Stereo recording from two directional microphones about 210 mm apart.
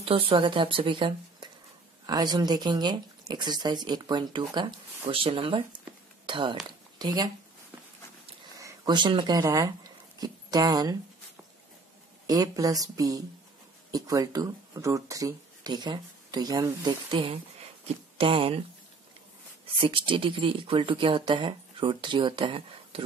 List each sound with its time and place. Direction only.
0.0 s speech: 25° right (ahead or behind)
6.2 s a sound: 25° right (ahead or behind)
8.5 s speech: 20° right (ahead or behind)
12.3 s speech: 15° right (ahead or behind)
19.6 s speech: 25° right (ahead or behind)